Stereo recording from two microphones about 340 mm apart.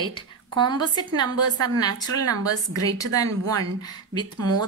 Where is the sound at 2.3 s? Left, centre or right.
Right.